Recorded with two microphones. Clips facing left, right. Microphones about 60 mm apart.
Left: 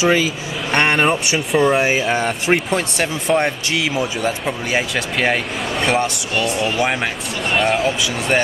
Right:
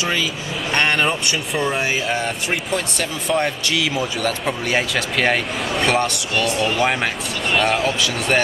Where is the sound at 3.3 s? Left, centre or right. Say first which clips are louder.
Left 1 dB; left.